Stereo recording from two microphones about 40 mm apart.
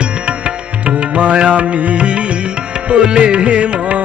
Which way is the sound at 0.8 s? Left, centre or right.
Right.